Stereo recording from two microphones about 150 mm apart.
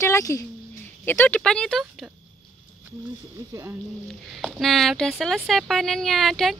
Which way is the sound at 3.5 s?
20° right (ahead or behind).